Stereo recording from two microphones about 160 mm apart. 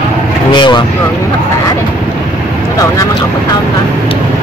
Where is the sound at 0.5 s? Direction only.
30° left (ahead or behind).